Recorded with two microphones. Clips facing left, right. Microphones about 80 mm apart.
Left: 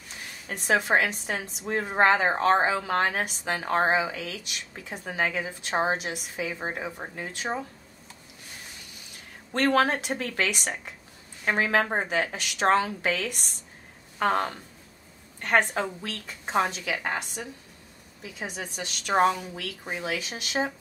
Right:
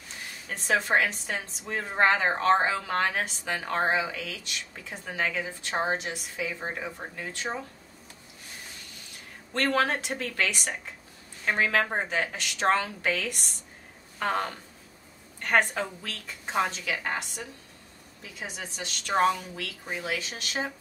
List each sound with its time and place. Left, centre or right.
0.5 s a woman's voice: centre
9.5 s a woman's voice: centre
18.4 s a woman's voice: centre